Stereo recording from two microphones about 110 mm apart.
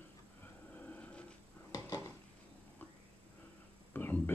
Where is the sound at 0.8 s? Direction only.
15° left (ahead or behind).